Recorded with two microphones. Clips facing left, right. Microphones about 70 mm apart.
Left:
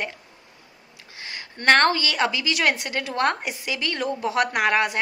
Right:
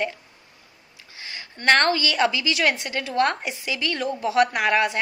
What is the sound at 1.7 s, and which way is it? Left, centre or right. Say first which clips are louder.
A woman's voice: left 1 dB; left.